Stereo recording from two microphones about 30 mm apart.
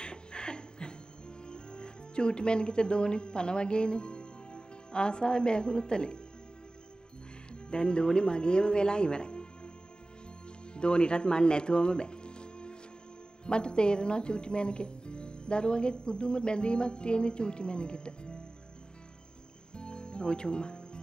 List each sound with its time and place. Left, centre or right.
0.0 s chuckle: left
1.5 s speech: left
7.7 s speech: left
10.7 s speech: left
19.7 s music: left